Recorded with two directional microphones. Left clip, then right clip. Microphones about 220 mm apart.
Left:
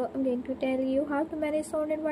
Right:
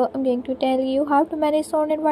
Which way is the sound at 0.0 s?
35° right (ahead or behind).